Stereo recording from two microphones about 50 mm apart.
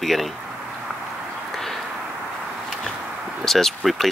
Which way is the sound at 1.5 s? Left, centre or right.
Centre.